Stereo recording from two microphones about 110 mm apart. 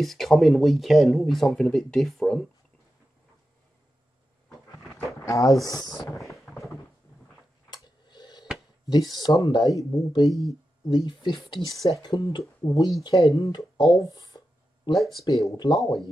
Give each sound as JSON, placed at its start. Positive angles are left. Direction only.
{"t": 0.0, "sound": "speech", "side_deg": 0}
{"t": 5.2, "sound": "speech", "side_deg": 30}
{"t": 6.1, "sound": "thunder", "side_deg": 0}
{"t": 7.7, "sound": "a sound", "side_deg": 40}
{"t": 8.8, "sound": "speech", "side_deg": 40}
{"t": 11.8, "sound": "speech", "side_deg": 30}
{"t": 12.1, "sound": "speech", "side_deg": 45}